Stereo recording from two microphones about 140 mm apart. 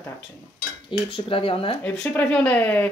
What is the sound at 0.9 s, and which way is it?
Speech, 40° left (ahead or behind).